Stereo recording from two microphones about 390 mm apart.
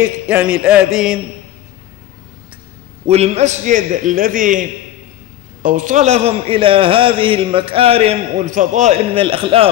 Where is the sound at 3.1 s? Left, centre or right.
Centre.